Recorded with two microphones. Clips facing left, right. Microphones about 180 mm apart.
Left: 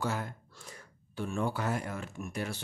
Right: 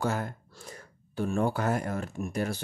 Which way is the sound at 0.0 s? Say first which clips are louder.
Right 4 dB; 45° right (ahead or behind).